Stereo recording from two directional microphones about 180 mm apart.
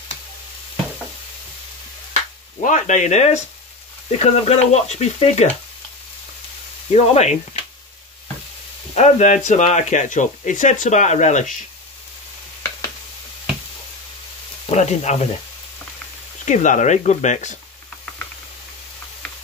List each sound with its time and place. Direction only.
2.6 s speech: 45° left (ahead or behind)
6.9 s speech: 40° left (ahead or behind)
8.9 s speech: 40° left (ahead or behind)
14.7 s speech: 35° left (ahead or behind)
16.4 s speech: 45° left (ahead or behind)